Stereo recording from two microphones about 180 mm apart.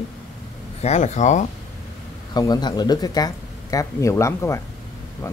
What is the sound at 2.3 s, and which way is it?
Speech, 20° left (ahead or behind).